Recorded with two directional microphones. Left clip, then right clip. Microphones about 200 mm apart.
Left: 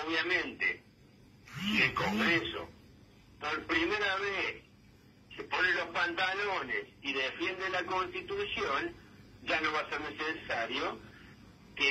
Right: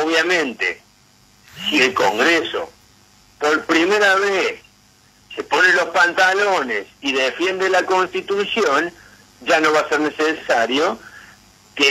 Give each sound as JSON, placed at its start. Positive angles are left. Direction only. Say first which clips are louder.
{"t": 0.1, "sound": "speech", "louder": "right 14 dB", "side_deg": -50}
{"t": 1.8, "sound": "speech", "louder": "right 14 dB", "side_deg": -50}